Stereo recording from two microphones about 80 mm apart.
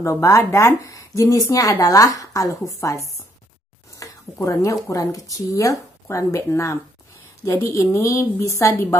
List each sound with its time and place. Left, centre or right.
0.0 s speech: left
4.0 s a woman's voice: left